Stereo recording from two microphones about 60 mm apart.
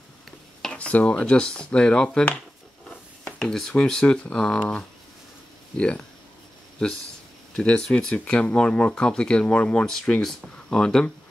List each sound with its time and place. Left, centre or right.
0.6 s speech: centre
3.5 s speech: centre
7.5 s speech: centre